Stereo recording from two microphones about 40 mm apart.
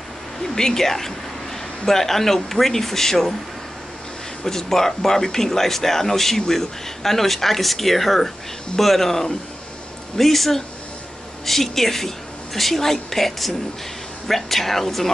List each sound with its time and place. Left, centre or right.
0.6 s speech: centre
4.5 s speech: centre